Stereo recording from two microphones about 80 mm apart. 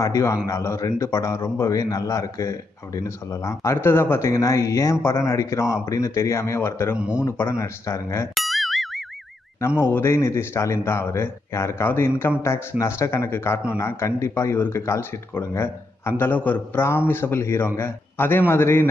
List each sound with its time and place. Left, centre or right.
0.0 s speech: left
1.8 s speech: left
7.0 s speech: centre
7.2 s speech: left
8.4 s boing: centre
9.8 s a man's voice: left